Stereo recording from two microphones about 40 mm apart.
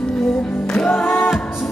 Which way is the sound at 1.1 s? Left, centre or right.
Centre.